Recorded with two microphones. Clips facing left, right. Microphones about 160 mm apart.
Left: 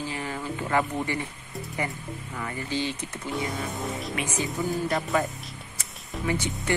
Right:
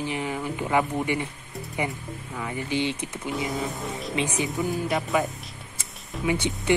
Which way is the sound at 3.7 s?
Centre (ahead or behind).